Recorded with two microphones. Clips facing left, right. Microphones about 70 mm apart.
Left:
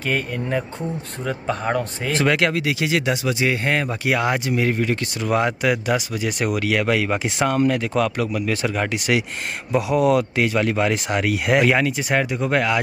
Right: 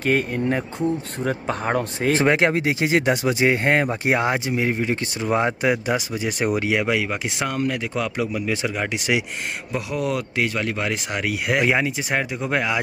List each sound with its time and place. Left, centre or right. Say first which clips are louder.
0.1 s speech: right 2 dB; centre
1.8 s speech: right 2 dB; right
7.1 s speech: left 5 dB; centre
8.2 s speech: left 1 dB; centre
8.9 s speech: left 1 dB; right
9.7 s speech: left 8 dB; centre